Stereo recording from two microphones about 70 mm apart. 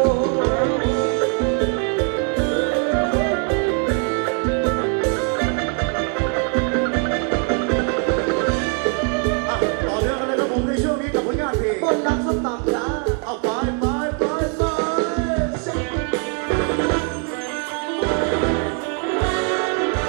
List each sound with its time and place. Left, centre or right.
0.0 s music: centre
13.8 s music: centre
18.0 s music: centre